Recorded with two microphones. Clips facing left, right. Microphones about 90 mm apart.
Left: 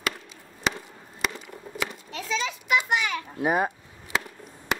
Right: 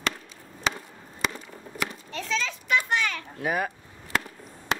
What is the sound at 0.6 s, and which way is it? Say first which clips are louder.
Skateboard: left 1 dB; centre (ahead or behind).